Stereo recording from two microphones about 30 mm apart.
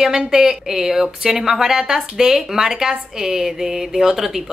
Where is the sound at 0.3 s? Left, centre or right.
Centre.